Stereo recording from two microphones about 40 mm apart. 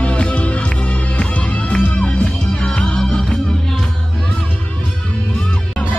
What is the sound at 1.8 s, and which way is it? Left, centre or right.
Music, left.